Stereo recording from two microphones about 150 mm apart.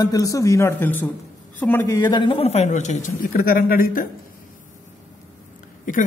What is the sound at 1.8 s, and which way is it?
A man's voice, 25° left (ahead or behind).